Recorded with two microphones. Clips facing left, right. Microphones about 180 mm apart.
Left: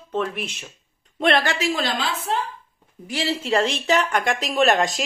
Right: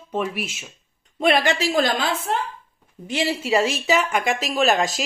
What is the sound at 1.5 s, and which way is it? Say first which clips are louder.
Speech: right 3 dB; 45° right (ahead or behind).